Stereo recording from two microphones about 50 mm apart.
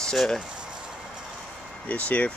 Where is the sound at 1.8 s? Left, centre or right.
Left.